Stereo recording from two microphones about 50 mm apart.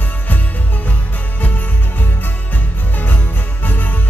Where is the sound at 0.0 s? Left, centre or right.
Left.